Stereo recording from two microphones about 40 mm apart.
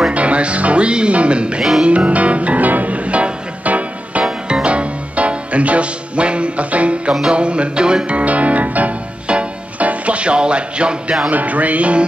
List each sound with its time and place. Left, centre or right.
0.1 s music: right
9.3 s music: right
11.2 s music: right